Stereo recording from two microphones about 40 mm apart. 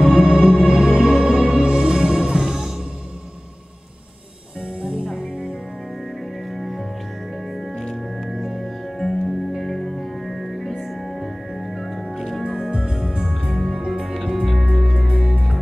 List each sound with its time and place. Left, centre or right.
0.0 s music: centre
5.0 s music: centre
6.5 s music: centre
12.7 s music: centre
14.2 s music: centre